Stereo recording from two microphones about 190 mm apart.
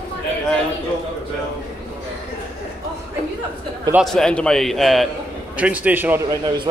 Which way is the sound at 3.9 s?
Centre (ahead or behind).